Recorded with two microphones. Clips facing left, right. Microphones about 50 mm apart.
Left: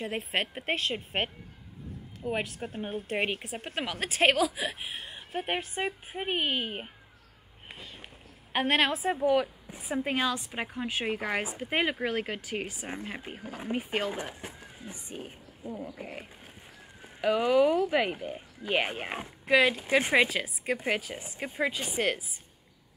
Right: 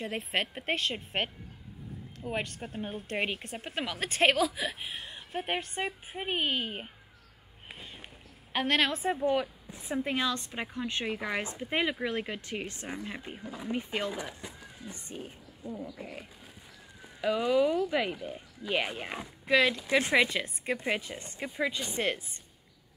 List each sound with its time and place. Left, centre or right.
0.0 s speech: centre
8.5 s a woman's voice: centre
9.8 s a woman's voice: centre
11.1 s speech: left
13.4 s speech: left
15.1 s speech: centre; by 19.3 s left
19.4 s a woman's voice: centre
20.2 s a woman's voice: centre
21.5 s speech: centre